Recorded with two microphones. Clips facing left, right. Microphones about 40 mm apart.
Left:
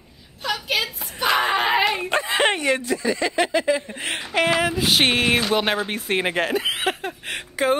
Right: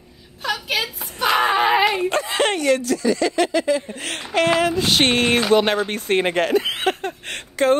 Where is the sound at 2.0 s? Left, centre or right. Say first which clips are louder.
Even; centre.